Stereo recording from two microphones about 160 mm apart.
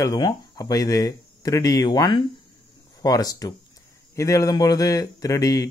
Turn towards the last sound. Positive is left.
turn(degrees=20)  # may be behind; listen again after turning